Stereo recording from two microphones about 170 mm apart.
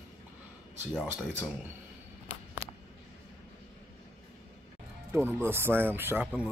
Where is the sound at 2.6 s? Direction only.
35° left (ahead or behind).